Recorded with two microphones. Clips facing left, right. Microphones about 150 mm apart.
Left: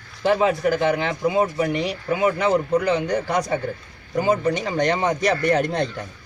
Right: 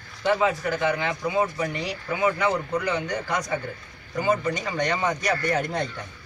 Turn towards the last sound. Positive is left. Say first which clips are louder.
# left 5 dB
turn(degrees=30)  # may be behind; listen again after turning